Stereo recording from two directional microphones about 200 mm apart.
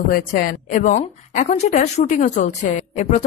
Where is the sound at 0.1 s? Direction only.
45° left (ahead or behind).